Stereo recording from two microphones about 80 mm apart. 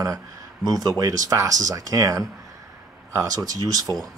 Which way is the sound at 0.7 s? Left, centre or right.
Right.